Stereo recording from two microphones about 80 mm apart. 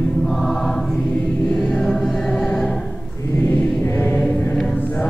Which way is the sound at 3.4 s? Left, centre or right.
Centre.